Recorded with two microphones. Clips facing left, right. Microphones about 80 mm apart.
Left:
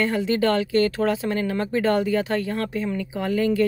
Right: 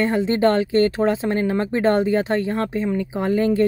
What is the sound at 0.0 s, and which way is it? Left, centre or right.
Speech, right.